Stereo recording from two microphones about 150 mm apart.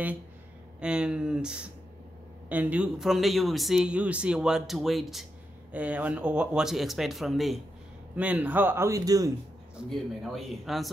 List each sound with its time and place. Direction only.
0.7 s a man's voice: 5° right (ahead or behind); by 9.3 s 25° right (ahead or behind)
9.8 s speech: centre (ahead or behind)